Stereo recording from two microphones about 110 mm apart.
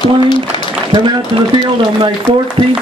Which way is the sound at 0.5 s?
50° left (ahead or behind).